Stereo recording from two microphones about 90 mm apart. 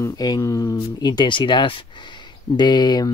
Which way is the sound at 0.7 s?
55° left (ahead or behind).